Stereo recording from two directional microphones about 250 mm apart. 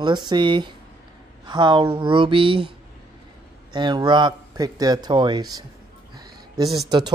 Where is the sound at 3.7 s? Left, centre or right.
Centre.